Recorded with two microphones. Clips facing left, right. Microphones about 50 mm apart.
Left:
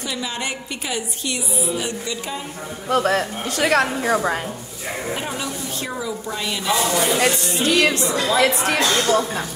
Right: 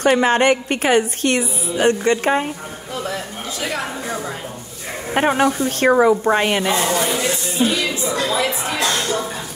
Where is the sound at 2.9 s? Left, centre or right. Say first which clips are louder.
Left 8 dB; left.